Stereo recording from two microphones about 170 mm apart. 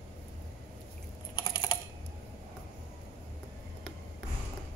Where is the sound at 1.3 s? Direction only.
25° left (ahead or behind).